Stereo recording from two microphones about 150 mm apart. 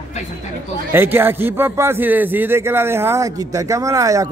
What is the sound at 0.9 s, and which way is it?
A man's voice, 15° right (ahead or behind).